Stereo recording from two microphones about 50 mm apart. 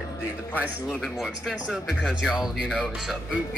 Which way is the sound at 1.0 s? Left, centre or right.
Centre.